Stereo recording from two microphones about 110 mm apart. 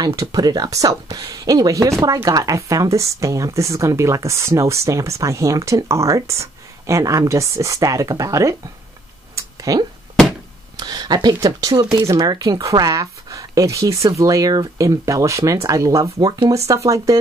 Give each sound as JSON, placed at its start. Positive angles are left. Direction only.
{"t": 0.0, "sound": "speech", "side_deg": -30}
{"t": 9.3, "sound": "a sound", "side_deg": -30}
{"t": 11.4, "sound": "speech", "side_deg": -40}